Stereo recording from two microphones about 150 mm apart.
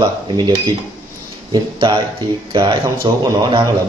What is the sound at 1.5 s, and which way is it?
A man's voice, 35° right (ahead or behind).